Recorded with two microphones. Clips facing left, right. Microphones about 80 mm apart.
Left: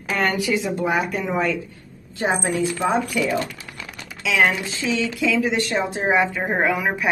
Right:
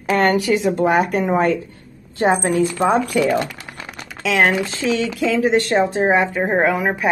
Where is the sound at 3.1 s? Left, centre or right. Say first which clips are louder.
Right 5 dB; right.